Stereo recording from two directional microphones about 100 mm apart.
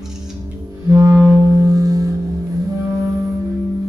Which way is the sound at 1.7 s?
35° right (ahead or behind).